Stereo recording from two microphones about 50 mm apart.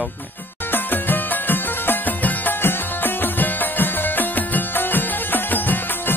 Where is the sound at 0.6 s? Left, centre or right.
Left.